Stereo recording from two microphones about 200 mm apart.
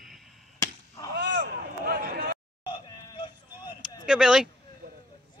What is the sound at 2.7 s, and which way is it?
Sheep, 20° left (ahead or behind).